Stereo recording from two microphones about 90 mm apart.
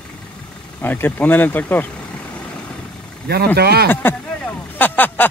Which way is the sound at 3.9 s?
20° left (ahead or behind).